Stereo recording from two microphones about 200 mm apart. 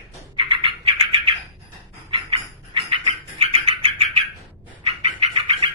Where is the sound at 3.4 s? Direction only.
30° right (ahead or behind).